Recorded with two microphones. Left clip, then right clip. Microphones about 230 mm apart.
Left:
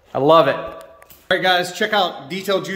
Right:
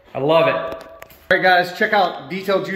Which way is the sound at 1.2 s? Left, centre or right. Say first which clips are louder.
Right 3 dB; centre.